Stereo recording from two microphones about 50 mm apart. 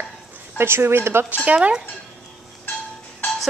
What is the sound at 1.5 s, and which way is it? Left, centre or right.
Speech, right.